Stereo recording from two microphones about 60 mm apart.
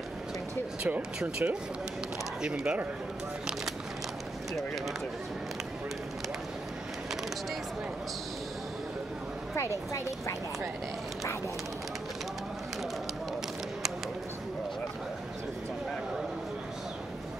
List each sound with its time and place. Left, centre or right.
0.8 s speech: right